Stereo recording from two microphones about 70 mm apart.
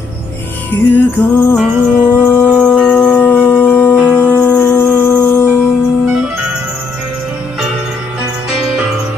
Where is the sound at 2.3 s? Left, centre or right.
Left.